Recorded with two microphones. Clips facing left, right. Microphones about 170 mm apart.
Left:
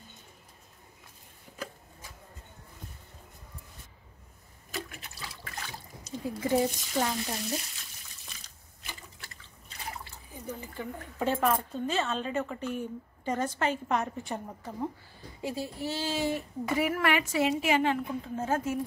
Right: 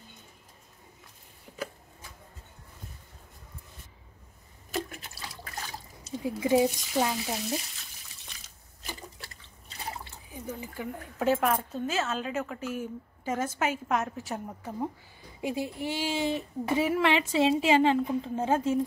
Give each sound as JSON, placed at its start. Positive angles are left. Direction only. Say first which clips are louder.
{"t": 4.6, "sound": "toilet flush", "louder": "right 5 dB", "side_deg": -40}
{"t": 6.2, "sound": "speech", "louder": "right 3 dB", "side_deg": -15}
{"t": 10.3, "sound": "speech", "louder": "right 1 dB", "side_deg": -10}
{"t": 15.4, "sound": "a woman's voice", "louder": "right 2 dB", "side_deg": -20}